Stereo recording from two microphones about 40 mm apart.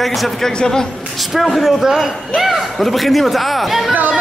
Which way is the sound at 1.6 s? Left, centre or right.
Centre.